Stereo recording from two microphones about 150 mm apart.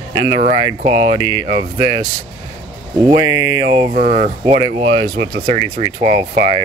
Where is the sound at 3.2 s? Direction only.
20° right (ahead or behind).